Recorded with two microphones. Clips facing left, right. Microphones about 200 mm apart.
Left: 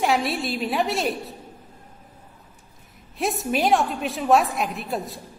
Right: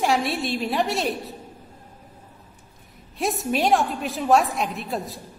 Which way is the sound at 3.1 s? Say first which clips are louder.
Even; centre (ahead or behind).